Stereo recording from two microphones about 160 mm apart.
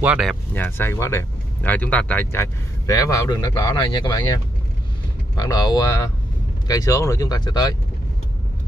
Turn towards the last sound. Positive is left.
turn(degrees=25)  # may be behind; listen again after turning